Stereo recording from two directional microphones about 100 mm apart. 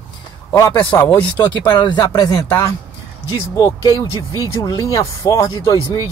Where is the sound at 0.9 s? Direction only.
20° left (ahead or behind).